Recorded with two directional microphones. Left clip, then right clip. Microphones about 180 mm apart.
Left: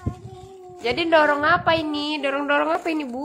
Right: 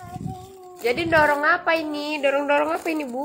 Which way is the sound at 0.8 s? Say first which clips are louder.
Left 1 dB; 5° left (ahead or behind).